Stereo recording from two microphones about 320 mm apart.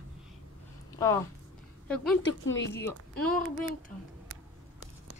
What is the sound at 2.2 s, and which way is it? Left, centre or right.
Speech, left.